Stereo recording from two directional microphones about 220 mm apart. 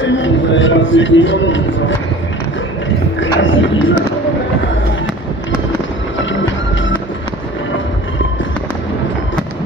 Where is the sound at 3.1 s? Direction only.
60° left (ahead or behind).